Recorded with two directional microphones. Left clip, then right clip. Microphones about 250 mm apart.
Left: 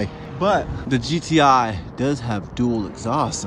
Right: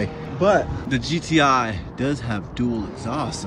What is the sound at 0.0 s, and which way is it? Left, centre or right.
Speech, centre.